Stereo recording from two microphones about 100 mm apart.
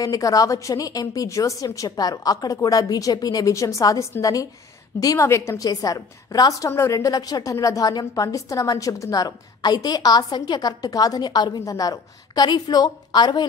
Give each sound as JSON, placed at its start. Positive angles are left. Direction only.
{"t": 0.0, "sound": "a woman's voice", "side_deg": 35}